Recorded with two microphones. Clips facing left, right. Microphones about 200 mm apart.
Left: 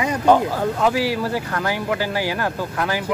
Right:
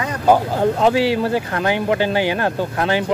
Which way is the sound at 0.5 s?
25° right (ahead or behind).